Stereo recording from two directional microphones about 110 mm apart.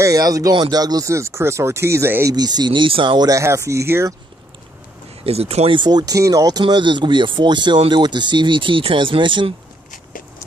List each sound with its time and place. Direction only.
0.0 s speech: 35° right (ahead or behind)
2.3 s speech: 40° right (ahead or behind)
3.3 s speech: 30° right (ahead or behind)
5.2 s speech: 65° right (ahead or behind)
5.8 s speech: 40° right (ahead or behind)
6.6 s speech: 45° right (ahead or behind)